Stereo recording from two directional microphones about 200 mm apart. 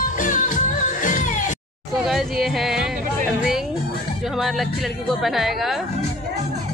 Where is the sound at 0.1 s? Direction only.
40° left (ahead or behind).